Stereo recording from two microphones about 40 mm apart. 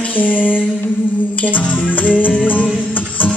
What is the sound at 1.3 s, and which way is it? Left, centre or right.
Music, left.